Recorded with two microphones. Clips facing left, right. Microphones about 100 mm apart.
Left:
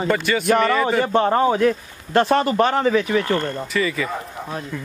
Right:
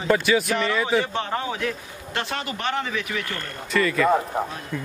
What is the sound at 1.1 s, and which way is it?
A man's voice, 40° left (ahead or behind).